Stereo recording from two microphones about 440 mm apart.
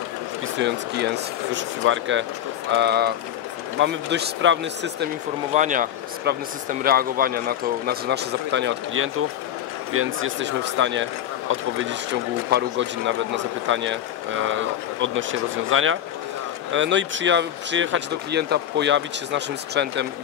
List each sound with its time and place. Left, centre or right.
0.6 s speech: right